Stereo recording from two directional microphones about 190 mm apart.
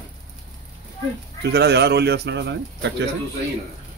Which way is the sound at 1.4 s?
60° right (ahead or behind).